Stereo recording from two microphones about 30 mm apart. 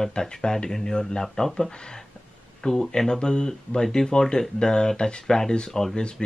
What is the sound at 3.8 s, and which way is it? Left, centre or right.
Speech, centre.